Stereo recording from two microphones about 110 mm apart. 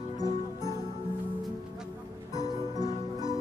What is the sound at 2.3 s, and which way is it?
Music, 30° left (ahead or behind).